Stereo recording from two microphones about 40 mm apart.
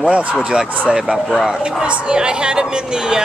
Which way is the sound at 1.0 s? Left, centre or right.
Centre.